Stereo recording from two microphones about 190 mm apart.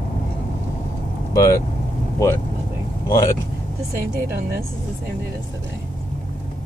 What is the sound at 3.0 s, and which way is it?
Speech, 20° left (ahead or behind).